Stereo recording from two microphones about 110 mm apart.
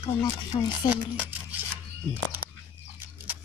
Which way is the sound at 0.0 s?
40° left (ahead or behind).